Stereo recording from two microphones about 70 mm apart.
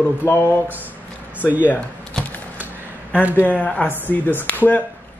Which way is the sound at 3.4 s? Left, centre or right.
Left.